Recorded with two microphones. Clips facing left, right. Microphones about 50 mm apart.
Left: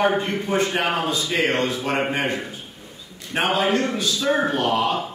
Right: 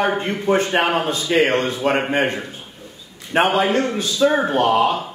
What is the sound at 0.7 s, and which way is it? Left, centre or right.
Speech, right.